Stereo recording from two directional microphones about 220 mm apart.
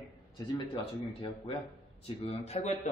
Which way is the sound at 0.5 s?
25° left (ahead or behind).